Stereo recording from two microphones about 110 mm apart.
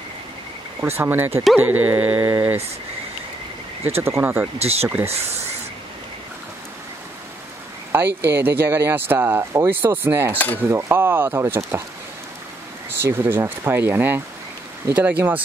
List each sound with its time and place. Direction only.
0.7 s speech: 20° right (ahead or behind)
1.6 s a sound: 15° right (ahead or behind)
2.3 s speech: 20° right (ahead or behind)
3.8 s speech: 20° right (ahead or behind)
4.6 s speech: 70° right (ahead or behind)
4.8 s speech: 20° right (ahead or behind)
7.9 s speech: 20° right (ahead or behind)
13.0 s speech: 20° right (ahead or behind)
14.9 s a sound: 15° right (ahead or behind)